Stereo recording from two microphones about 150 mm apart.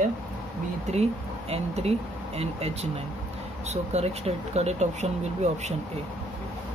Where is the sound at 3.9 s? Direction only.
45° right (ahead or behind).